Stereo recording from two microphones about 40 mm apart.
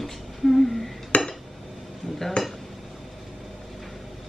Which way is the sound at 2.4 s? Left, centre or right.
Left.